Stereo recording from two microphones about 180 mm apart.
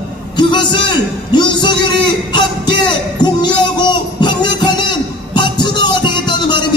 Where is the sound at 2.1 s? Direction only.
25° left (ahead or behind).